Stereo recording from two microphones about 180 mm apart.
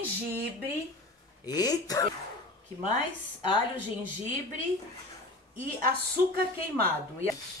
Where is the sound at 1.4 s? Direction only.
20° left (ahead or behind).